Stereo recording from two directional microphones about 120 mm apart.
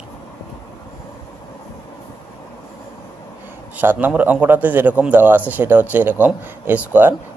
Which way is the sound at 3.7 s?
15° right (ahead or behind).